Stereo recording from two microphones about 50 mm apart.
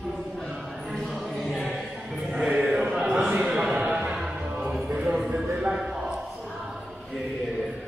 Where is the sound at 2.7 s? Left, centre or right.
Right.